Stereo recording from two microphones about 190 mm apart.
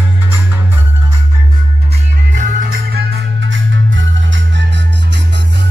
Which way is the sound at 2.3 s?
45° right (ahead or behind).